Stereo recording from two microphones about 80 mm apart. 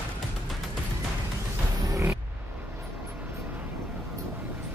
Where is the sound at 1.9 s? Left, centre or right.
Right.